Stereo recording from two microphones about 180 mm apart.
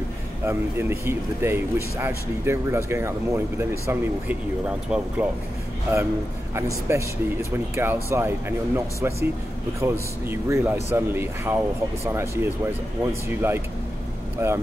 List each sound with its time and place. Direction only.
0.5 s a man's voice: 15° right (ahead or behind)
6.9 s a man's voice: 15° right (ahead or behind)